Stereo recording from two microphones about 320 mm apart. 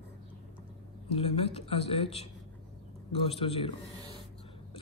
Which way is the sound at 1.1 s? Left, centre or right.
Centre.